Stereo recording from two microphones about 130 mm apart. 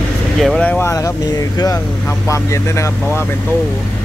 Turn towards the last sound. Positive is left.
turn(degrees=20)  # may be behind; listen again after turning